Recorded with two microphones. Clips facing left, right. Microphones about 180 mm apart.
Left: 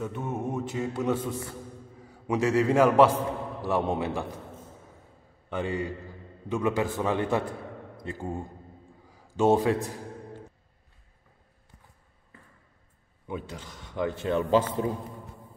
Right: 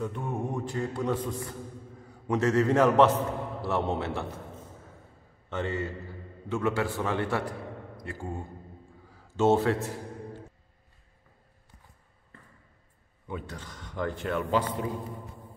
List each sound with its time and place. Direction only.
0.2 s mantra: 5° left (ahead or behind)
2.2 s a man's voice: 10° left (ahead or behind)
5.5 s a man's voice: 15° left (ahead or behind)
13.3 s a man's voice: 25° left (ahead or behind)